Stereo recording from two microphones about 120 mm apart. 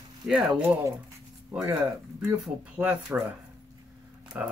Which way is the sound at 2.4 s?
10° right (ahead or behind).